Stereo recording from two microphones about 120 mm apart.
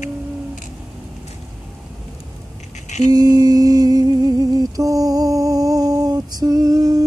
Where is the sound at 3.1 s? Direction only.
35° right (ahead or behind).